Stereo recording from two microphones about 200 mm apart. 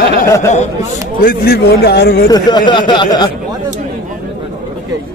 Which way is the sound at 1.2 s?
45° left (ahead or behind).